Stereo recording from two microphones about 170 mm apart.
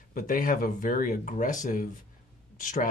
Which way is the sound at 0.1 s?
55° left (ahead or behind).